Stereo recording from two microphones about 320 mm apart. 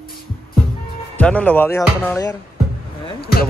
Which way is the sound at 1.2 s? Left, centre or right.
Centre.